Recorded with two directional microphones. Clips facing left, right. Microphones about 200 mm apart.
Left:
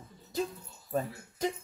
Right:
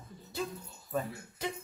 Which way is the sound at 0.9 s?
40° left (ahead or behind).